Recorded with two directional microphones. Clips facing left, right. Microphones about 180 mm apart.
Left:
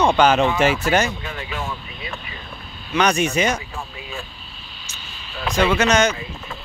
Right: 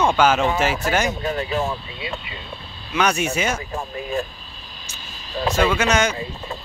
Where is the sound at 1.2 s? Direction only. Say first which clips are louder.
Right 7 dB; 40° right (ahead or behind).